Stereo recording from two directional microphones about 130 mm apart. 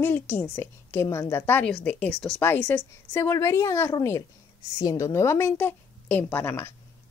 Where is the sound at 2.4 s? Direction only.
15° left (ahead or behind).